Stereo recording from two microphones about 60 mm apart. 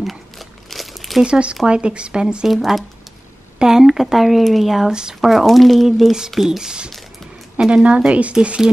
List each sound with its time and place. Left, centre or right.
0.0 s crumpling: centre
1.2 s speech: centre
2.4 s a woman's voice: centre